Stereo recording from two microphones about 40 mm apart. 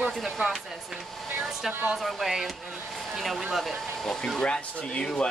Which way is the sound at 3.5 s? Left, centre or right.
Centre.